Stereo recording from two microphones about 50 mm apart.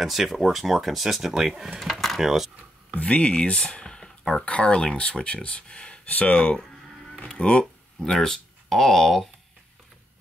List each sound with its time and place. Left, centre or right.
0.0 s speech: centre
1.8 s speech: centre
2.9 s speech: left
8.0 s speech: centre